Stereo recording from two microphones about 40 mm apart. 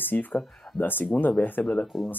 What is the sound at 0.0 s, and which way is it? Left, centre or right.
Speech, left.